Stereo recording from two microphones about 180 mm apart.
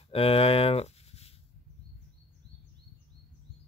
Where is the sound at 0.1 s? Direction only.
30° left (ahead or behind).